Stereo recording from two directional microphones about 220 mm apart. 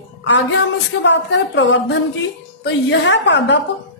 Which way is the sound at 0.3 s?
55° left (ahead or behind).